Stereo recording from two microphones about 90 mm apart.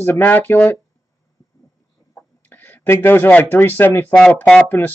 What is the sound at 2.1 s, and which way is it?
Speech, 20° left (ahead or behind).